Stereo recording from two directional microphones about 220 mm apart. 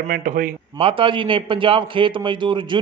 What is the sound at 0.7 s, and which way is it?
A man's voice, 25° right (ahead or behind).